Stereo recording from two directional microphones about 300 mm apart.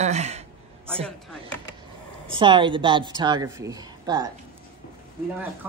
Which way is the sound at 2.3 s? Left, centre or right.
Centre.